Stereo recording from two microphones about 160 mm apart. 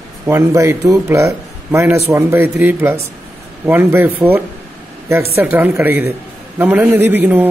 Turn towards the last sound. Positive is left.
turn(degrees=-10)  # may be behind; listen again after turning